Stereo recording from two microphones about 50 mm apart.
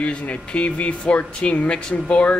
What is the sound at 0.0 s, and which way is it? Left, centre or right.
Speech, left.